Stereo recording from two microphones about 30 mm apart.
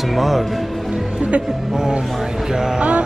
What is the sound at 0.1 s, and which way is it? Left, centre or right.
Speech, centre.